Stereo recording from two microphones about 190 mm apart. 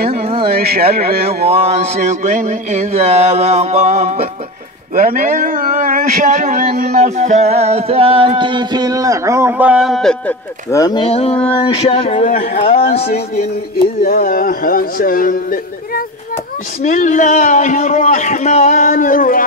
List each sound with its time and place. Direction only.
0.1 s a sound: 30° right (ahead or behind)
0.5 s speech: 55° right (ahead or behind)
1.6 s a man's voice: 35° right (ahead or behind); by 10.3 s centre (ahead or behind)
10.7 s a man's voice: 20° left (ahead or behind)
14.0 s a man's voice: 50° left (ahead or behind)